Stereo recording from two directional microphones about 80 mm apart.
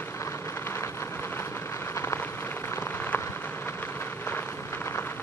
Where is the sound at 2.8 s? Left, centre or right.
Left.